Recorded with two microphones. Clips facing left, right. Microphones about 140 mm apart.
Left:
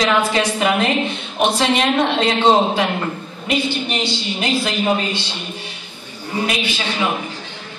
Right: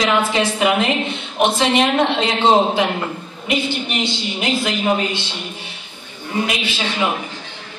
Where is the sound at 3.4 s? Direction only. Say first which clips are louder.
Left 1 dB; 20° right (ahead or behind).